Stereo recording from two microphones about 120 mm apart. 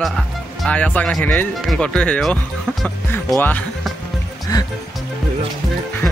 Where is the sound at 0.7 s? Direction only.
10° left (ahead or behind).